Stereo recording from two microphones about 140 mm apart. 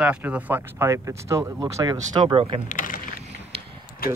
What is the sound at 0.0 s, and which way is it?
Speech, 10° right (ahead or behind).